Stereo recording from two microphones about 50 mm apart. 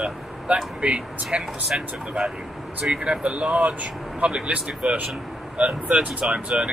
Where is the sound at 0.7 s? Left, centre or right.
Right.